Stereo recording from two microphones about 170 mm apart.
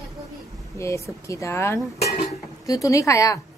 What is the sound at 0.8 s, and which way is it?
A woman's voice, 20° left (ahead or behind).